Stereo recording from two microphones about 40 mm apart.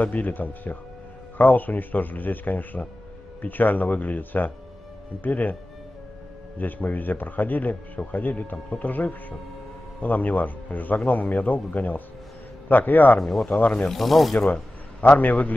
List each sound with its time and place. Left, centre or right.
0.0 s speech: left
6.6 s speech: left
13.2 s rub: centre
13.5 s speech: left
13.8 s rub: centre
14.5 s a man's voice: left